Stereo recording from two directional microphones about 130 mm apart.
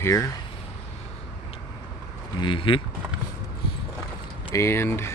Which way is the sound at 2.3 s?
40° left (ahead or behind).